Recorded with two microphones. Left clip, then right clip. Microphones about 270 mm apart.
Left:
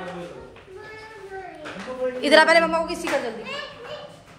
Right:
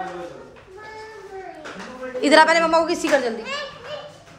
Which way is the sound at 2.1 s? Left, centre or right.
Centre.